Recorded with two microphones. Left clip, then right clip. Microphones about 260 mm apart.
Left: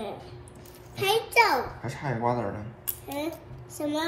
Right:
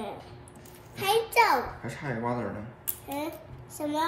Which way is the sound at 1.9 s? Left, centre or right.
Centre.